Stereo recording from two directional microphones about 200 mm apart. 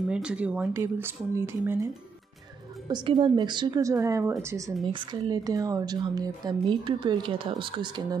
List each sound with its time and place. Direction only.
0.1 s a woman's voice: 5° right (ahead or behind)
2.9 s a woman's voice: 25° right (ahead or behind)